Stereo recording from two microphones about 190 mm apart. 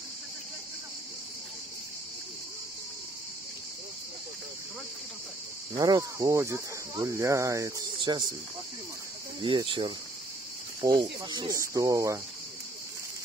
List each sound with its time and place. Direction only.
5.8 s speech: 20° right (ahead or behind)
9.4 s speech: 25° right (ahead or behind)